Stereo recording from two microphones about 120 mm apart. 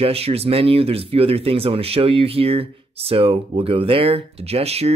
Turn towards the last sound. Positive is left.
turn(degrees=-60)  # may be behind; listen again after turning